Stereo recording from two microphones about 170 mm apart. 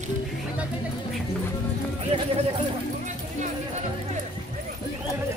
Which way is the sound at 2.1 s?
35° right (ahead or behind).